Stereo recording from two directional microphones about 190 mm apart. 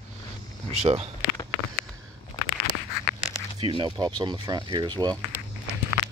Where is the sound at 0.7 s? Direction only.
35° right (ahead or behind).